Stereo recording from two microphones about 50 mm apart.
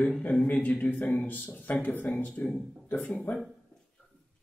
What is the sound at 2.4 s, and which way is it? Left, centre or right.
Speech, left.